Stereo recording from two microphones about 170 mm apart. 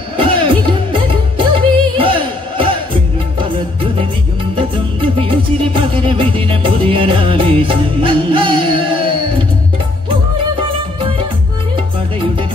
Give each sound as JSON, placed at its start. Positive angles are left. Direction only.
{"t": 0.2, "sound": "music", "side_deg": -30}
{"t": 5.2, "sound": "music", "side_deg": -30}